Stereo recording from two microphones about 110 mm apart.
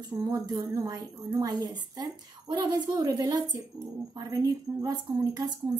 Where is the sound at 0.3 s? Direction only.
35° right (ahead or behind).